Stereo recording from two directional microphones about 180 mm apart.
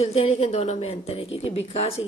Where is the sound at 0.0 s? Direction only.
35° left (ahead or behind).